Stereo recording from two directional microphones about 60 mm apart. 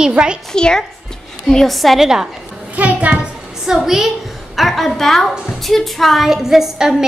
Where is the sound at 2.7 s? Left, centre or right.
Right.